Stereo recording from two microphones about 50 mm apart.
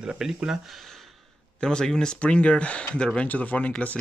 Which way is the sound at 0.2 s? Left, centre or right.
Centre.